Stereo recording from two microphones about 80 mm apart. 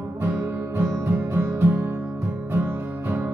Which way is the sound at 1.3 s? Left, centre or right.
Right.